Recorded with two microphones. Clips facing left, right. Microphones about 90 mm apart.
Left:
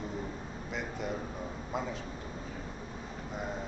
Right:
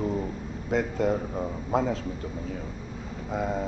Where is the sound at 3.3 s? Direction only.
90° right.